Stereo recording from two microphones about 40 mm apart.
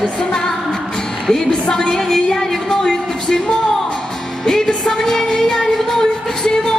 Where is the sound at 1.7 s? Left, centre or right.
Centre.